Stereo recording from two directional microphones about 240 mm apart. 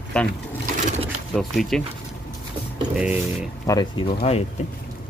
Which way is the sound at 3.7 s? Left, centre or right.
Centre.